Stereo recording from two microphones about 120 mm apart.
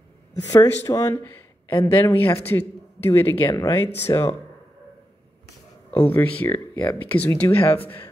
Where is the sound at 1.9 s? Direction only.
15° left (ahead or behind).